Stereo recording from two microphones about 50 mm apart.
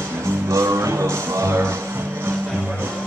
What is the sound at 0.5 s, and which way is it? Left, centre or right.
Music, right.